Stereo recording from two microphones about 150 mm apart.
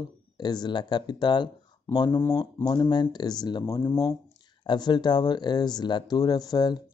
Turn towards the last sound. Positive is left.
turn(degrees=25)  # may be behind; listen again after turning